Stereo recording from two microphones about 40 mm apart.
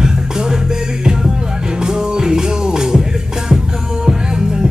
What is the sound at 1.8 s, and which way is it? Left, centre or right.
Music, centre.